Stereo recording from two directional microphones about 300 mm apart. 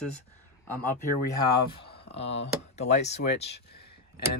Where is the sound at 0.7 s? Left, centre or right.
Centre.